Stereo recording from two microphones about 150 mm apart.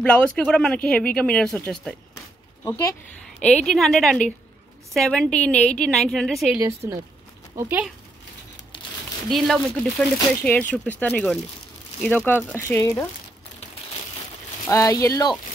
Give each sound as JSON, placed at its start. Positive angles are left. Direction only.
{"t": 0.0, "sound": "a woman's voice", "side_deg": 10}
{"t": 2.6, "sound": "speech", "side_deg": 25}
{"t": 3.4, "sound": "a woman's voice", "side_deg": 5}
{"t": 6.8, "sound": "speech", "side_deg": -20}
{"t": 9.3, "sound": "a woman's voice", "side_deg": 0}
{"t": 14.7, "sound": "speech", "side_deg": 20}